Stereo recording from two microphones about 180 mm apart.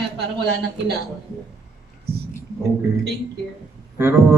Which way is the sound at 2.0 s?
65° right (ahead or behind).